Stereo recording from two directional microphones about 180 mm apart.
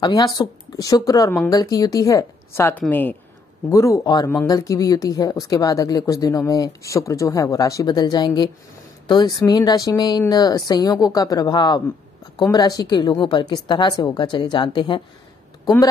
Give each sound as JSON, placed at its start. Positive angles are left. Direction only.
{"t": 0.0, "sound": "a woman's voice", "side_deg": 25}